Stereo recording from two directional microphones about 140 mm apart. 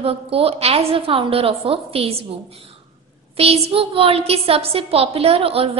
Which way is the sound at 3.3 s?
45° right (ahead or behind).